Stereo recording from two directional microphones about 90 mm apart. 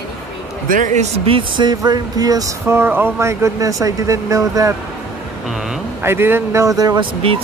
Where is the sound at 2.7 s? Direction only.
25° right (ahead or behind).